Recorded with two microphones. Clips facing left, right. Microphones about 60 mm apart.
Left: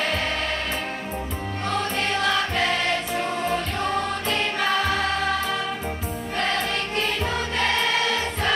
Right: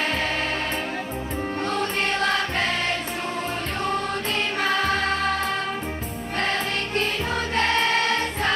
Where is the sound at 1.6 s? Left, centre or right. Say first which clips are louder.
Left 2 dB; right.